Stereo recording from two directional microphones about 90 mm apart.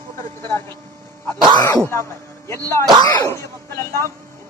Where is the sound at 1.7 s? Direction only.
25° left (ahead or behind).